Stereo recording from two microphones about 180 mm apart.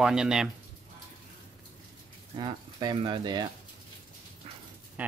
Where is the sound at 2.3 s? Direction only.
25° right (ahead or behind).